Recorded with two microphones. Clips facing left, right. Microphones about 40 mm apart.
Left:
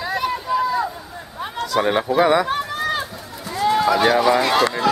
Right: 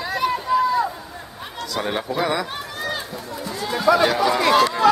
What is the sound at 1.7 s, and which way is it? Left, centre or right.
Speech, left.